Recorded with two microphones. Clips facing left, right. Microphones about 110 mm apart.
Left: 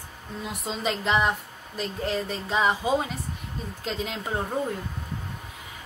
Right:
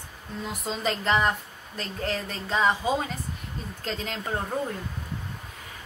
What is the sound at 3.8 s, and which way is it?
Speech, 10° left (ahead or behind).